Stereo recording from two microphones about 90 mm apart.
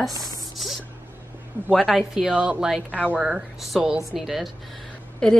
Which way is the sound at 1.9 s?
5° right (ahead or behind).